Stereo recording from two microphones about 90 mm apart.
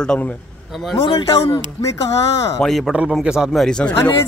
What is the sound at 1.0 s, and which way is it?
Speech, 65° left (ahead or behind).